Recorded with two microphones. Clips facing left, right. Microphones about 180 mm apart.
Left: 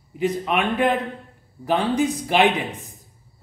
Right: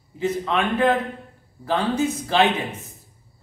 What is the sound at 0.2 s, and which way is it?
Speech, 15° left (ahead or behind).